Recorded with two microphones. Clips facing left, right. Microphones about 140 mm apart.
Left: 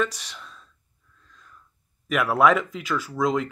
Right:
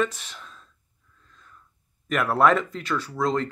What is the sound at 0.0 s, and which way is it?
Speech, centre (ahead or behind).